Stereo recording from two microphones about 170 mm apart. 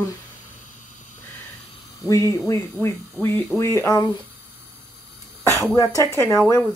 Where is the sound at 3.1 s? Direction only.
10° left (ahead or behind).